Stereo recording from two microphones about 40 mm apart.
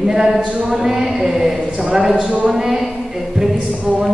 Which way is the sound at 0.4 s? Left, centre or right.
Right.